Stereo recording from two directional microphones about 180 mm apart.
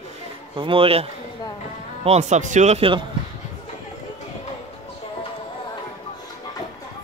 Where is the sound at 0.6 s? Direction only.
30° right (ahead or behind).